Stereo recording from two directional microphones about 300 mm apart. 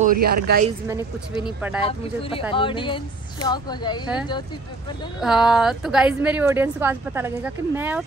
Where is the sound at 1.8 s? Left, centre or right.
Centre.